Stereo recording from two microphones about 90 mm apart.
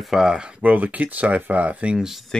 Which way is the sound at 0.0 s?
5° right (ahead or behind).